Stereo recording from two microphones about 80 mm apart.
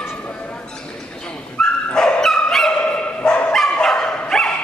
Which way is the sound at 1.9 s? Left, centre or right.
Centre.